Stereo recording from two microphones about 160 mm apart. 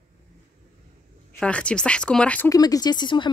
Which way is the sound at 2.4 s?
20° left (ahead or behind).